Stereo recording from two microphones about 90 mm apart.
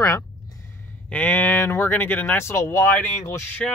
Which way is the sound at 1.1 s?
20° left (ahead or behind).